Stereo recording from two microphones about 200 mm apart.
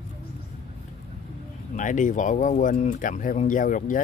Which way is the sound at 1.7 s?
40° left (ahead or behind).